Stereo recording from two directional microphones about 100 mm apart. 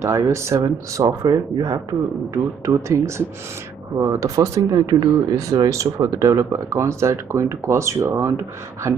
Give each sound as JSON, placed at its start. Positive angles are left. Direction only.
{"t": 0.0, "sound": "speech", "side_deg": -30}